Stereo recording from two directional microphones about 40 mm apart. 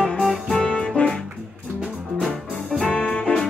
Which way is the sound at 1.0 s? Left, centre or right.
Left.